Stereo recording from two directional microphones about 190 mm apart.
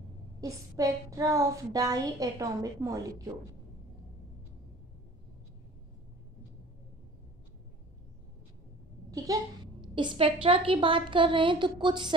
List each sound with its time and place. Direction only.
0.4 s a woman's voice: 20° right (ahead or behind)
9.1 s a woman's voice: 20° right (ahead or behind)